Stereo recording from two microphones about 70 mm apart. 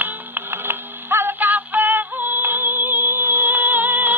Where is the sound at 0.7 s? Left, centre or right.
Right.